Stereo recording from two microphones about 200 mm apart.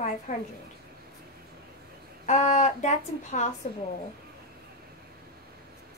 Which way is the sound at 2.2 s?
35° left (ahead or behind).